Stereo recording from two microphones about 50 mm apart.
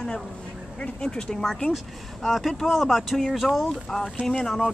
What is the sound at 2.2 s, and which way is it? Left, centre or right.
Speech, centre.